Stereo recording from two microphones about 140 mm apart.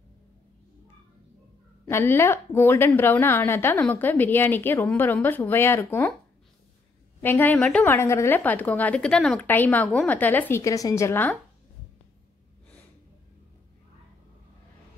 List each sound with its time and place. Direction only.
1.9 s a woman's voice: 15° left (ahead or behind)
7.2 s a woman's voice: 15° left (ahead or behind)
7.5 s a woman's voice: 5° left (ahead or behind)
7.8 s a woman's voice: 15° left (ahead or behind)